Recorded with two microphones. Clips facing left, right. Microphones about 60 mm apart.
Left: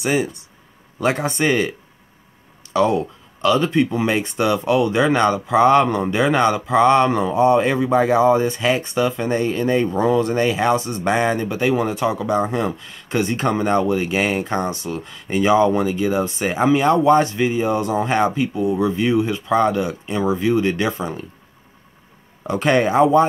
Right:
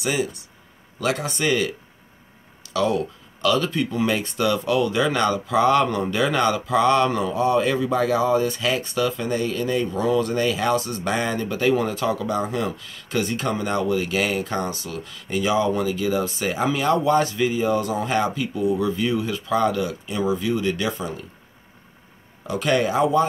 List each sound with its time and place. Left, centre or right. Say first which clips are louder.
0.0 s speech: left 4 dB; left
2.7 s speech: left 4 dB; left
11.4 s speech: left 2 dB; centre; by 21.0 s left
22.5 s speech: left 4 dB; left